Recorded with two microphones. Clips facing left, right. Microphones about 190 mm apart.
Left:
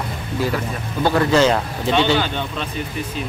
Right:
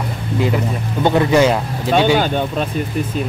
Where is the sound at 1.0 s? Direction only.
15° right (ahead or behind).